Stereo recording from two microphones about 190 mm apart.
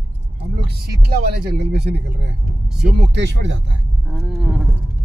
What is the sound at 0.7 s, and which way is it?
Speech, 55° right (ahead or behind).